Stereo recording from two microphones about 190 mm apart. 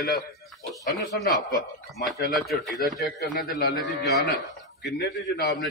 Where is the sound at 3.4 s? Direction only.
50° left (ahead or behind).